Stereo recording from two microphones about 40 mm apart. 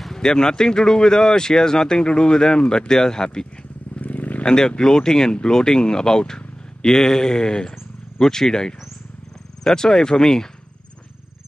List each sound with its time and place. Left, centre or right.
0.2 s speech: centre
4.0 s wild animals: left
4.5 s speech: centre